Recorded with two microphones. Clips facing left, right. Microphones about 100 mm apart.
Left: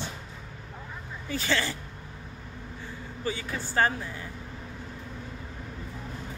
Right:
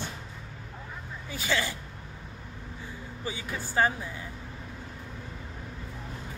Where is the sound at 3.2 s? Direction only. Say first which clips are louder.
Left 3 dB; 15° right (ahead or behind).